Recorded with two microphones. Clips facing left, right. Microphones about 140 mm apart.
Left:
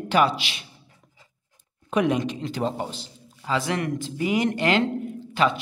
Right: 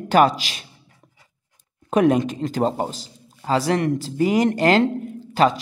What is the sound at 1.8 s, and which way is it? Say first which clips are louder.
A man's voice: right 5 dB; 45° right (ahead or behind).